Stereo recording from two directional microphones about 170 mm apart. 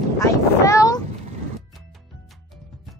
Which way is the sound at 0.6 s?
20° left (ahead or behind).